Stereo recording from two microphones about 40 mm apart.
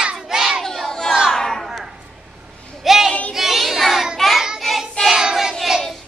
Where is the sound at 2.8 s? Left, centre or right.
Centre.